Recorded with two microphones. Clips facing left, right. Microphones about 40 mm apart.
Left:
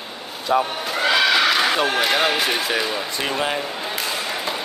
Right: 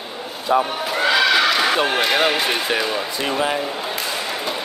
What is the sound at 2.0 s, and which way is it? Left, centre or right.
Speech, centre.